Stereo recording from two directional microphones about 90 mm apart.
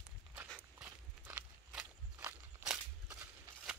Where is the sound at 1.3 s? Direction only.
15° right (ahead or behind).